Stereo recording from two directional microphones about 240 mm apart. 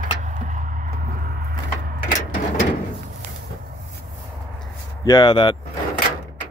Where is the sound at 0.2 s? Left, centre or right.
Right.